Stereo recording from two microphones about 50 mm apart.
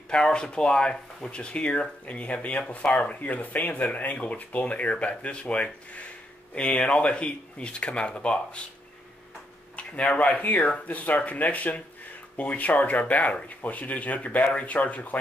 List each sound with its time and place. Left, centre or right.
0.1 s speech: centre
9.8 s speech: left